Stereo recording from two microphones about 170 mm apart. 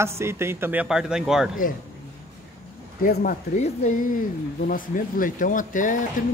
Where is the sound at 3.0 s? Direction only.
60° left (ahead or behind).